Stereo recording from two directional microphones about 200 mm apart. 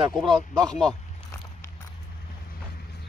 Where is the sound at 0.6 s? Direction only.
5° left (ahead or behind).